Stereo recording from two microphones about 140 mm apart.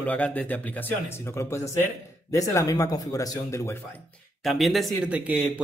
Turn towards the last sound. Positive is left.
turn(degrees=-10)  # may be behind; listen again after turning